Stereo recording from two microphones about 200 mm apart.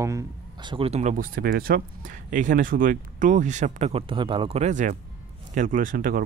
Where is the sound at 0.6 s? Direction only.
30° right (ahead or behind).